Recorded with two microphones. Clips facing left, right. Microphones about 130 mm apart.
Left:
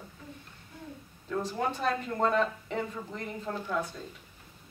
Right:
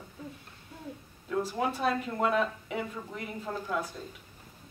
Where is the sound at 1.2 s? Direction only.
5° right (ahead or behind).